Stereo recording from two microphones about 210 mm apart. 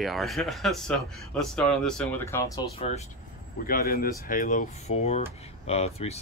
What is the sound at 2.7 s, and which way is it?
Speech, 30° left (ahead or behind).